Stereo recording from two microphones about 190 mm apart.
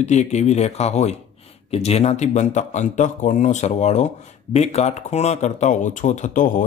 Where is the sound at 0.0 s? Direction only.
35° left (ahead or behind).